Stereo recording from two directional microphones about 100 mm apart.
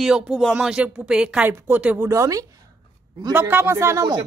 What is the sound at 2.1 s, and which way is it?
Speech, 35° right (ahead or behind).